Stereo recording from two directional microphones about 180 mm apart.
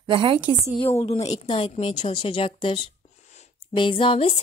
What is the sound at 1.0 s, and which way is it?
A woman's voice, 35° left (ahead or behind).